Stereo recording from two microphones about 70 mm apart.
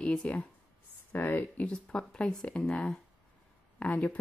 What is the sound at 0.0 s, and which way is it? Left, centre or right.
Speech, centre.